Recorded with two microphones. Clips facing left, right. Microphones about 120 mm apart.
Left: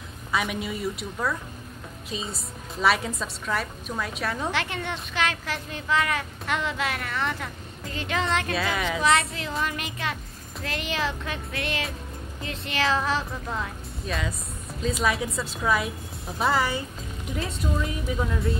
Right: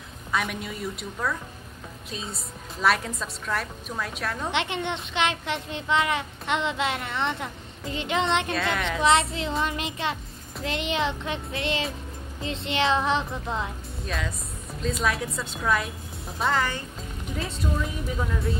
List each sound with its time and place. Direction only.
0.3 s a woman's voice: centre (ahead or behind)
4.5 s a child's voice: 20° right (ahead or behind)
8.5 s a woman's voice: 5° left (ahead or behind)
9.0 s a child's voice: 25° right (ahead or behind)
14.0 s a woman's voice: centre (ahead or behind)